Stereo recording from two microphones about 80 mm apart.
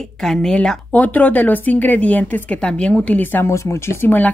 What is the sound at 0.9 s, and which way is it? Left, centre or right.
Speech, left.